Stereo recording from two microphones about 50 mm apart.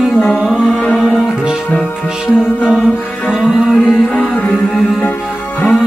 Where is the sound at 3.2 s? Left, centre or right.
Centre.